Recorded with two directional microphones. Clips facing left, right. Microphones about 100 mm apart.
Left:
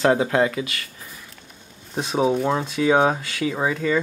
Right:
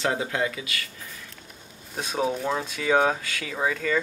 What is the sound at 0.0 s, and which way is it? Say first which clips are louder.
Speech: left 8 dB; 55° left (ahead or behind).